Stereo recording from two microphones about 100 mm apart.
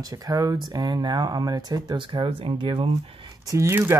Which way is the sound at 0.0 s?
40° right (ahead or behind).